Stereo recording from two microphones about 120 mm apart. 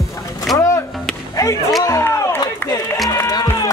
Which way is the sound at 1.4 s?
25° left (ahead or behind).